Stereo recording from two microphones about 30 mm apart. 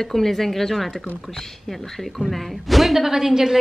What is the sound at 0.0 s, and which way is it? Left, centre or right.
Speech, centre.